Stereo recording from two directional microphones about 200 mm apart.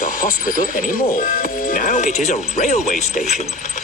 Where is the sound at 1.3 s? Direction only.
45° left (ahead or behind).